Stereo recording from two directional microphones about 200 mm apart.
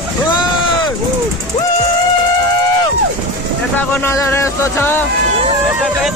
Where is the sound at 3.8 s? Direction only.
10° left (ahead or behind).